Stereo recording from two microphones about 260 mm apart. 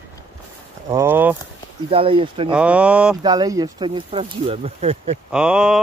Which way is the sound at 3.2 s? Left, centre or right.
Centre.